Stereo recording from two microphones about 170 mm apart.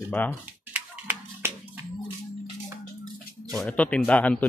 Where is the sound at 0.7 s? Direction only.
10° right (ahead or behind).